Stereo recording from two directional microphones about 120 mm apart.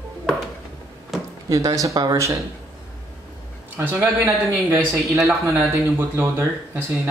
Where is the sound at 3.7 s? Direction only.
15° right (ahead or behind).